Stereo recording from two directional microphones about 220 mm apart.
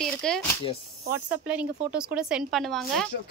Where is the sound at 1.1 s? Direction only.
5° right (ahead or behind).